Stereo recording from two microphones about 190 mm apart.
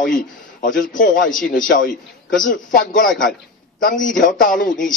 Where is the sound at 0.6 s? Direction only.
45° left (ahead or behind).